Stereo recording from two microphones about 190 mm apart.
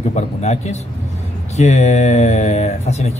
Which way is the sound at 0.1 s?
35° left (ahead or behind).